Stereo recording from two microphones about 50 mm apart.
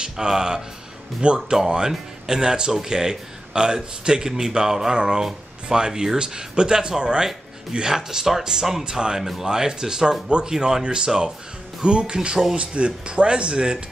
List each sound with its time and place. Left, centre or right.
0.0 s speech: centre